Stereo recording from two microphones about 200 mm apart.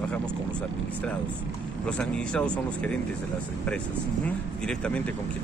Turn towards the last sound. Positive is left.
turn(degrees=5)  # may be behind; listen again after turning